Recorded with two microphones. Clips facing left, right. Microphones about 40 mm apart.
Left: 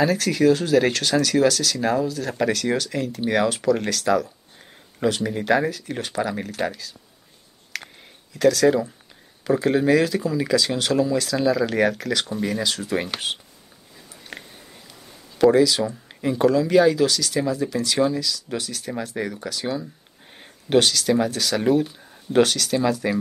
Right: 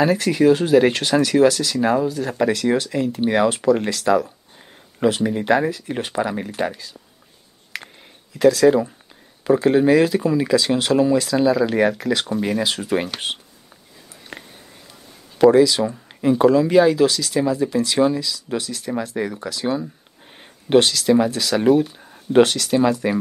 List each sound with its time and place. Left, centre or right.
0.0 s speech: centre
3.7 s speech: centre
7.7 s a sound: right
8.4 s speech: right
8.6 s speech: centre
15.3 s speech: right
16.4 s speech: right
18.6 s speech: right
19.1 s speech: centre
19.5 s speech: right
21.5 s speech: centre
22.0 s a sound: centre
22.4 s speech: right